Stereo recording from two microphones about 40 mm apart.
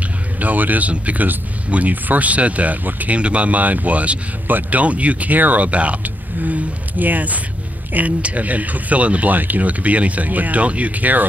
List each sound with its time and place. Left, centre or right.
0.4 s speech: right
3.2 s speech: right